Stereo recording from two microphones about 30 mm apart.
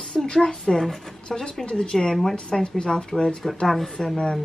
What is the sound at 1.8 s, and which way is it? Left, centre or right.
A woman's voice, left.